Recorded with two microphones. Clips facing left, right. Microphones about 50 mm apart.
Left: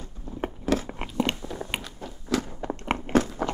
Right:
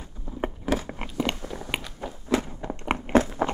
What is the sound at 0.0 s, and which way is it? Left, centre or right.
Biting, centre.